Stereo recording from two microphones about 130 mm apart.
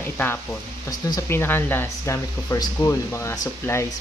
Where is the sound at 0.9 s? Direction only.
30° left (ahead or behind).